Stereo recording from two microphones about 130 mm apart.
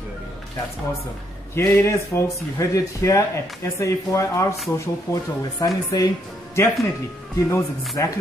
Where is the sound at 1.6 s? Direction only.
20° left (ahead or behind).